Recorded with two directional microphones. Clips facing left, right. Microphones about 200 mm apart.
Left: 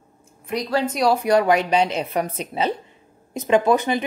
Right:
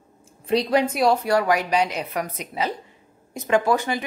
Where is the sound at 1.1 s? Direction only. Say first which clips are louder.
Left 3 dB; 20° left (ahead or behind).